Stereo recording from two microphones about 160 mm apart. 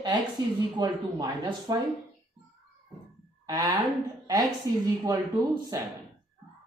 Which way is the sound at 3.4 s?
25° right (ahead or behind).